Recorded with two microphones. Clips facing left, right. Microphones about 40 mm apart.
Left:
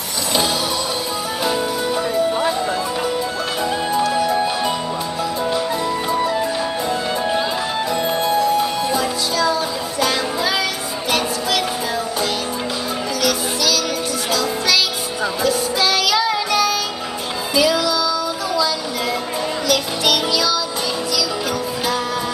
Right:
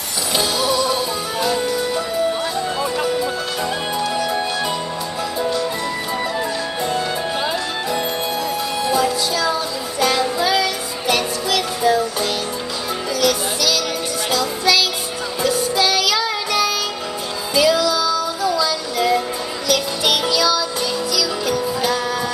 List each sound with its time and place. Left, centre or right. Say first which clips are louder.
9.5 s music: left 1 dB; centre
15.4 s music: right 2 dB; centre